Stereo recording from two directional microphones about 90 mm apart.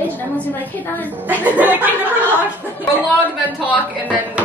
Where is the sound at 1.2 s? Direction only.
20° right (ahead or behind).